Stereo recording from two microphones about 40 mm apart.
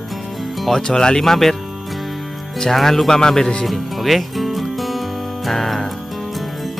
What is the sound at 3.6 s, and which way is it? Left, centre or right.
Music, centre.